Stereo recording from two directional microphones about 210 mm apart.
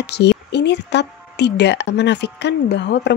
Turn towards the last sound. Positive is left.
turn(degrees=55)  # may be behind; listen again after turning